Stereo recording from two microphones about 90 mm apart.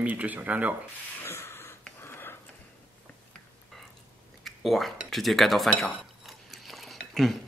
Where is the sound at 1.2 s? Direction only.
25° left (ahead or behind).